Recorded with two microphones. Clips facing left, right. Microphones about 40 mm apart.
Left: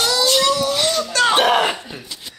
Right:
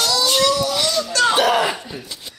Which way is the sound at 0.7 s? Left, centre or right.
Left.